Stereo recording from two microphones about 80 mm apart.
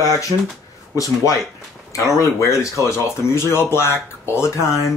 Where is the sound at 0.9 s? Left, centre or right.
Left.